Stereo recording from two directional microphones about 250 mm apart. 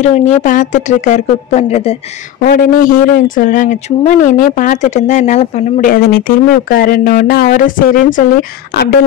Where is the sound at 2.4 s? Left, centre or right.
Left.